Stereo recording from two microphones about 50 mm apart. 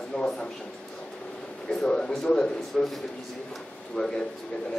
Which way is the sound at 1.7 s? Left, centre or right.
Centre.